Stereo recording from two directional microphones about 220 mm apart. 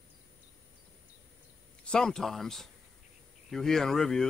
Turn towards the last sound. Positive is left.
turn(degrees=0)  # may be behind; listen again after turning